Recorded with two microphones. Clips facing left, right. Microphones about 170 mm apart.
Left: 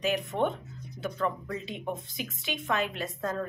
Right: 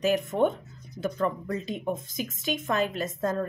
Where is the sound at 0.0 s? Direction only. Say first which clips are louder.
Right 4 dB; 45° right (ahead or behind).